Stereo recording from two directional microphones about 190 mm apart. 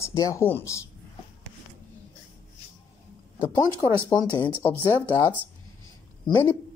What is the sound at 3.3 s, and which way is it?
Speech, 15° left (ahead or behind).